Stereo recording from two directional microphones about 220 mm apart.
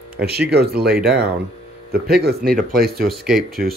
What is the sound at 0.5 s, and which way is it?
Speech, 45° right (ahead or behind).